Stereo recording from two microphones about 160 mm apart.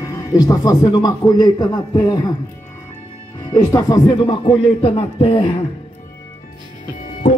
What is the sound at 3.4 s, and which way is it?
Speech, 25° left (ahead or behind).